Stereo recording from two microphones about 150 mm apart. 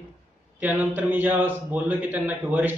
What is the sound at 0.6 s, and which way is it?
A man's voice, 10° right (ahead or behind).